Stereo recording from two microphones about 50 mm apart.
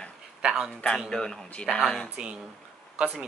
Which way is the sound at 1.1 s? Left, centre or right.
Centre.